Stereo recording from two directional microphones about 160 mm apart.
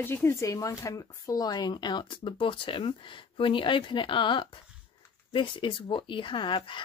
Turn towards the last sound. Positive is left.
turn(degrees=30)  # may be behind; listen again after turning